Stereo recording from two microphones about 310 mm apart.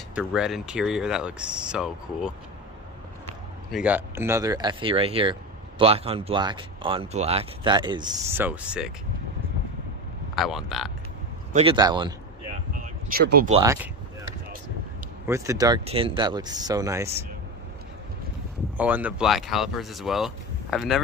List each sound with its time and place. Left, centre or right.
0.1 s speech: centre
3.7 s speech: centre
10.3 s speech: centre
11.5 s speech: centre
12.7 s a sound: right
15.2 s speech: centre
18.8 s speech: centre